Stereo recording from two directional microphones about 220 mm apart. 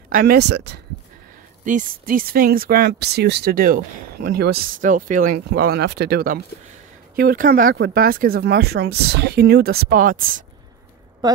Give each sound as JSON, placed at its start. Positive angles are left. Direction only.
{"t": 0.1, "sound": "speech", "side_deg": -45}
{"t": 1.6, "sound": "speech", "side_deg": -35}